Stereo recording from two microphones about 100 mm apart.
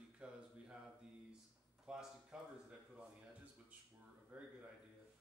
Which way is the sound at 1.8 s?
10° right (ahead or behind).